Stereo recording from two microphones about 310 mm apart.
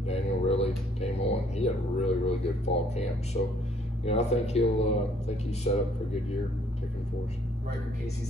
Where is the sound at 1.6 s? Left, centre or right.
Centre.